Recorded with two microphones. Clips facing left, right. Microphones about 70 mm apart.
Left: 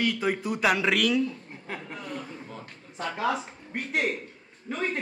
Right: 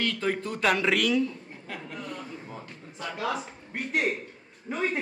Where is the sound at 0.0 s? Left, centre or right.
Centre.